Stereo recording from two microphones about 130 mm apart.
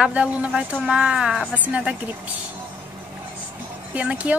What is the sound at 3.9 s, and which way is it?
Speech, 10° right (ahead or behind).